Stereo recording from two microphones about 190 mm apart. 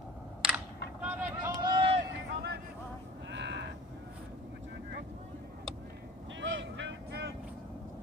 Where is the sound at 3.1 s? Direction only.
70° right (ahead or behind).